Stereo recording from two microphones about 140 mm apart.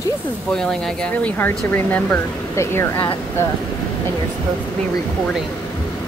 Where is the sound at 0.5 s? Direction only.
5° left (ahead or behind); by 2.9 s 20° left (ahead or behind).